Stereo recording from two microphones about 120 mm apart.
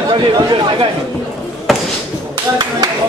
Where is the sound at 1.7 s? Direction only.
Centre (ahead or behind).